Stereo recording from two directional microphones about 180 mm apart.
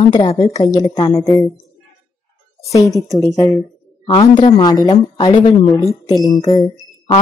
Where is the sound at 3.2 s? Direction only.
20° left (ahead or behind).